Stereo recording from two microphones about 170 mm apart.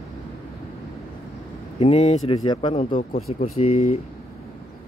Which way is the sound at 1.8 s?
40° left (ahead or behind).